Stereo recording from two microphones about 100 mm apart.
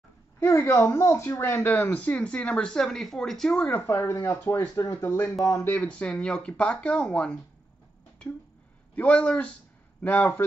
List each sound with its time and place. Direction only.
0.4 s a woman's voice: 30° left (ahead or behind); by 3.7 s 5° left (ahead or behind)
3.7 s speech: 25° left (ahead or behind)
5.7 s speech: 15° left (ahead or behind)
8.9 s speech: 15° left (ahead or behind)
10.0 s a woman's voice: 20° left (ahead or behind)